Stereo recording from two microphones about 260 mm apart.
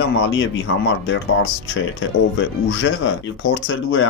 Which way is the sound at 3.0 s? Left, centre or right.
Left.